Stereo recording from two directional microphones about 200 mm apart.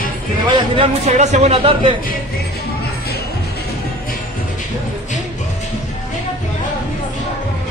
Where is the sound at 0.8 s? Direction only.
35° right (ahead or behind).